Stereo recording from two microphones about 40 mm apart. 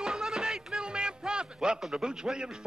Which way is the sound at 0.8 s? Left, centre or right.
Right.